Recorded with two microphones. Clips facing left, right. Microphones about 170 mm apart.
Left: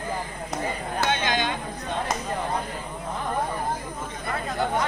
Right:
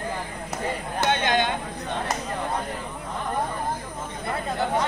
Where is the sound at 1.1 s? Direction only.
60° right (ahead or behind).